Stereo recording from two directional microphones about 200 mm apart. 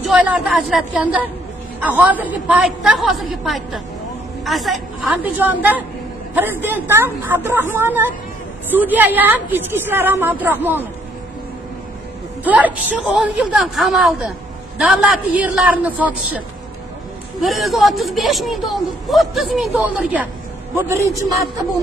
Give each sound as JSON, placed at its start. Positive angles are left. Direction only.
{"t": 0.0, "sound": "a woman's voice", "side_deg": 0}
{"t": 12.4, "sound": "a woman's voice", "side_deg": -10}
{"t": 17.4, "sound": "a woman's voice", "side_deg": 0}
{"t": 20.7, "sound": "a woman's voice", "side_deg": -15}